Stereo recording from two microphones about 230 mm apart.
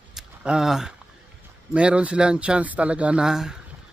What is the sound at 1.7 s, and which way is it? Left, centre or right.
Speech, centre.